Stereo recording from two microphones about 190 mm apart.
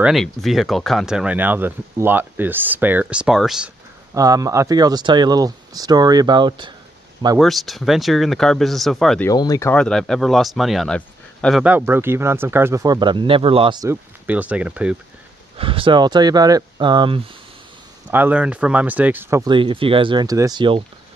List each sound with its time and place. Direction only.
0.0 s speech: centre (ahead or behind)
4.1 s speech: 20° right (ahead or behind)
7.3 s speech: centre (ahead or behind)
9.3 s speech: 20° left (ahead or behind); by 11.6 s 5° left (ahead or behind)
11.6 s speech: 10° right (ahead or behind); by 13.8 s 25° right (ahead or behind)
13.8 s speech: 10° right (ahead or behind)
15.5 s speech: 30° right (ahead or behind)
18.1 s speech: 10° right (ahead or behind)
19.5 s speech: 25° right (ahead or behind)